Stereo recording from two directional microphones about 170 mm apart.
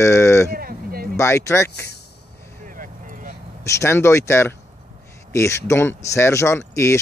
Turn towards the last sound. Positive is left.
turn(degrees=15)  # may be behind; listen again after turning